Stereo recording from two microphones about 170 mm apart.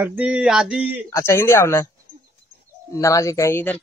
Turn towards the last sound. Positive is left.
turn(degrees=15)  # may be behind; listen again after turning